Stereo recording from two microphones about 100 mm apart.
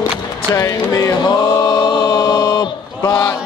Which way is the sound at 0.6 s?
40° left (ahead or behind).